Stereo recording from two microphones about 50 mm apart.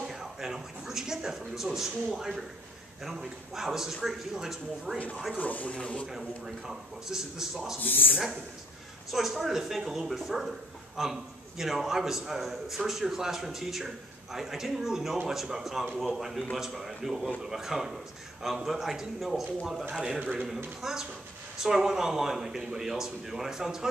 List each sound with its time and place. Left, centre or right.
0.1 s a man's voice: centre
5.4 s speech: left
6.0 s a man's voice: centre
7.8 s speech: left
9.1 s a man's voice: centre
19.9 s a man's voice: centre